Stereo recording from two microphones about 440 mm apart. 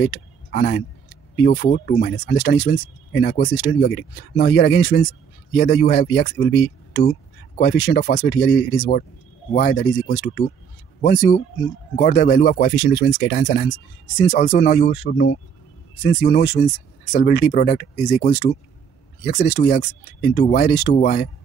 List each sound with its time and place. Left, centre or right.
0.0 s speech: left
11.9 s speech: left